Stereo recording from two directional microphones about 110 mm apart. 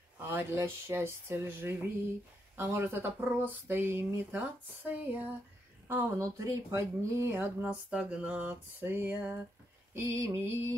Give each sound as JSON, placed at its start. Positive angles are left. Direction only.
{"t": 0.2, "sound": "speech", "side_deg": -20}
{"t": 7.6, "sound": "a sound", "side_deg": -10}
{"t": 9.9, "sound": "speech", "side_deg": -25}